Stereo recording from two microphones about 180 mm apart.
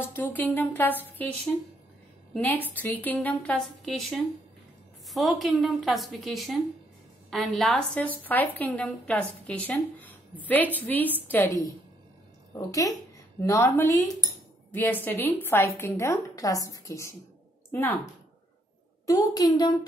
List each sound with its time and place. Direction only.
0.1 s a woman's voice: 10° left (ahead or behind)
12.5 s a woman's voice: 20° left (ahead or behind)
19.0 s a woman's voice: 20° left (ahead or behind)